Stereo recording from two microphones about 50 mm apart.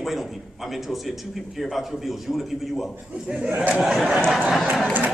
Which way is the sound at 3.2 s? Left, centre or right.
Centre.